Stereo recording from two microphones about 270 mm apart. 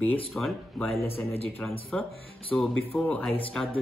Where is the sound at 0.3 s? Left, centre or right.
Centre.